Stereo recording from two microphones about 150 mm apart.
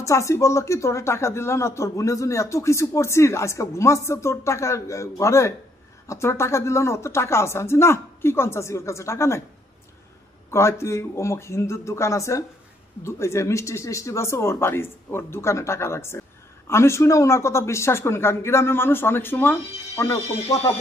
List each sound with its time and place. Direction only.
0.0 s speech: 20° left (ahead or behind)
10.5 s speech: 20° left (ahead or behind)